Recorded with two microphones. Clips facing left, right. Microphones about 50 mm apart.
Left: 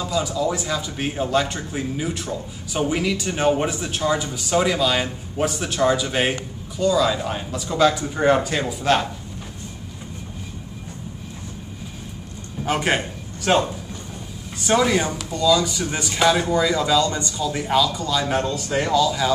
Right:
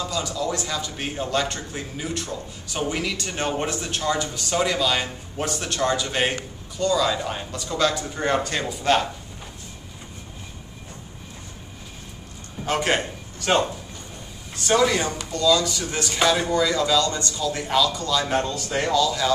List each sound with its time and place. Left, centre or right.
0.0 s a man's voice: centre
12.6 s a man's voice: centre